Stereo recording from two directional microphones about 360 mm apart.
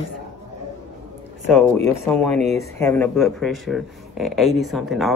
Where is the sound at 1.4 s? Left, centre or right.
Centre.